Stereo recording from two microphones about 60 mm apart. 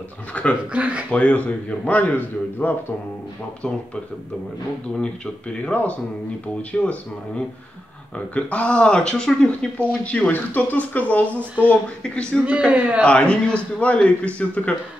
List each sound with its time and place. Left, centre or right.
0.3 s speech: left
0.7 s a man's voice: right
1.1 s speech: left
4.9 s speech: centre
12.0 s speech: centre
12.4 s a man's voice: right
13.0 s speech: centre